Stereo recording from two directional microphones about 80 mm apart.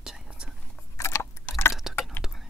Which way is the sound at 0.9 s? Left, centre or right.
Left.